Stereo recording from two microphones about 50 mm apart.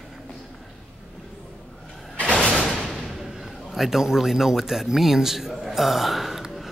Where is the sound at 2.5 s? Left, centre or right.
Centre.